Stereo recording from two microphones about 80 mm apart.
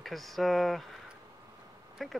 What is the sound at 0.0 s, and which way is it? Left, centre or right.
Speech, centre.